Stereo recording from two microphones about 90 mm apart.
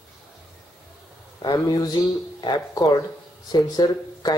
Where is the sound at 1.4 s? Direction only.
50° left (ahead or behind).